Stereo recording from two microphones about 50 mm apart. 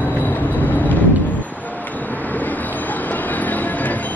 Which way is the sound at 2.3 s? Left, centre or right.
Left.